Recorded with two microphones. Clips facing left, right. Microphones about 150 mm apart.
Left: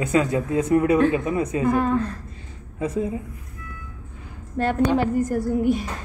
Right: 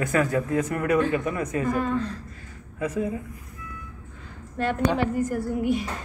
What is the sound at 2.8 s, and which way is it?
Speech, 30° left (ahead or behind).